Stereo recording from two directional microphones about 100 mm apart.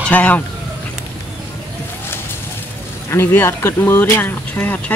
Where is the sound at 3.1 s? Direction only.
20° left (ahead or behind).